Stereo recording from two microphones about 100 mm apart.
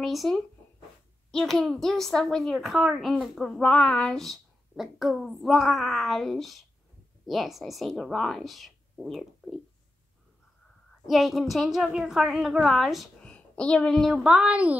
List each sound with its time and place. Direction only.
0.0 s a woman's voice: centre (ahead or behind)
11.1 s a woman's voice: centre (ahead or behind)
14.2 s a woman's voice: 10° right (ahead or behind)